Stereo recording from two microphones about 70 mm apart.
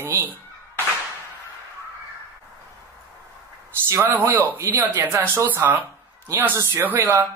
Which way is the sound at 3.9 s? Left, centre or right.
Right.